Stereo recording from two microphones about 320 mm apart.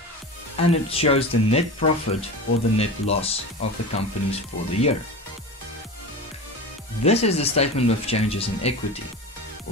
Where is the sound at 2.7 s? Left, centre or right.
Centre.